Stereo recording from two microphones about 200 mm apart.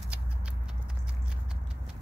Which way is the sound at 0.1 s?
5° right (ahead or behind).